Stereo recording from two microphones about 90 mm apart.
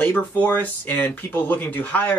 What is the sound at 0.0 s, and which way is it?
Speech, 20° left (ahead or behind).